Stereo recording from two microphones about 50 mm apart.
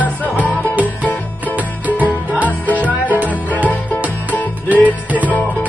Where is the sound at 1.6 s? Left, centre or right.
Right.